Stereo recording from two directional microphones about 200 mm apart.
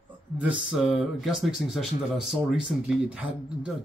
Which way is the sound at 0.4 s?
5° right (ahead or behind).